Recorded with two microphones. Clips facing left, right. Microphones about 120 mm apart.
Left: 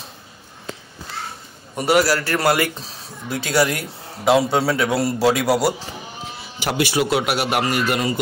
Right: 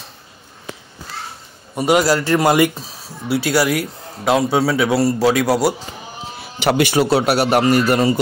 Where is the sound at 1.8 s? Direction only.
15° right (ahead or behind).